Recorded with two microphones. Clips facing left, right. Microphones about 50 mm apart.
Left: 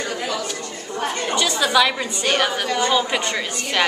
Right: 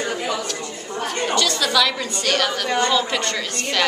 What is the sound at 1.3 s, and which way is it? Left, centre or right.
A woman's voice, centre.